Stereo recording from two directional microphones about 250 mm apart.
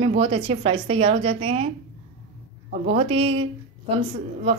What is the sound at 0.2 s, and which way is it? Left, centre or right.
Speech, right.